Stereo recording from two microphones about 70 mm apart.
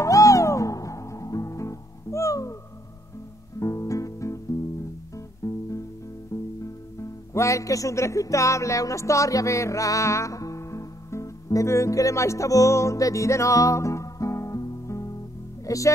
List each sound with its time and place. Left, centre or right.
0.0 s music: left
3.5 s music: left
15.6 s speech: left